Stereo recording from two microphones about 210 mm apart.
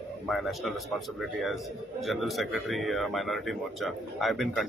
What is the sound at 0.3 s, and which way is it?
A man's voice, centre (ahead or behind).